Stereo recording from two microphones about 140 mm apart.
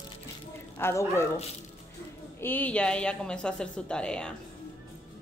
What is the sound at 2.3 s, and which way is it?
A woman's voice, 15° left (ahead or behind).